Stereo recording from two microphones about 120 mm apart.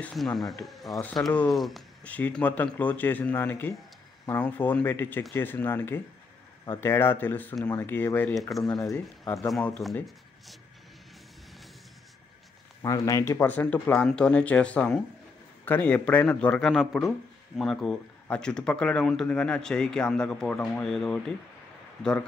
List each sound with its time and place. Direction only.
0.1 s speech: centre (ahead or behind)
2.0 s speech: 10° left (ahead or behind)
8.4 s speech: centre (ahead or behind)
8.6 s speech: 30° left (ahead or behind)
9.5 s speech: centre (ahead or behind)
12.8 s speech: 30° left (ahead or behind); by 21.4 s 5° left (ahead or behind)